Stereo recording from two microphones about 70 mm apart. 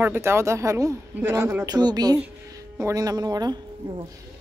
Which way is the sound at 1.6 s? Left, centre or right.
Right.